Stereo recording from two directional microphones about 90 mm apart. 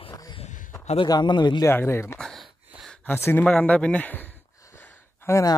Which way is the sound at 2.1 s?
5° left (ahead or behind).